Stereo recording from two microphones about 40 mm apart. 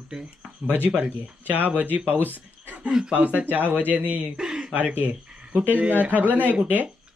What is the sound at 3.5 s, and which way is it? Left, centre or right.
Speech, right.